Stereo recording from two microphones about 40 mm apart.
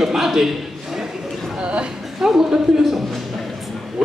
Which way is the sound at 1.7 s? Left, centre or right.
Right.